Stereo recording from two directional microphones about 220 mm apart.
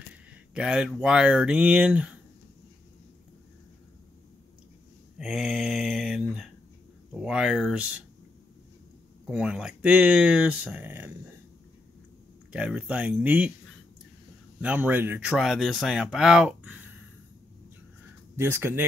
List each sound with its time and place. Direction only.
0.1 s speech: 5° right (ahead or behind)
5.2 s mantra: centre (ahead or behind)
7.2 s speech: 5° right (ahead or behind)
9.3 s speech: 5° right (ahead or behind)
12.5 s speech: 5° right (ahead or behind)
14.6 s speech: 5° right (ahead or behind)
18.3 s speech: 10° right (ahead or behind)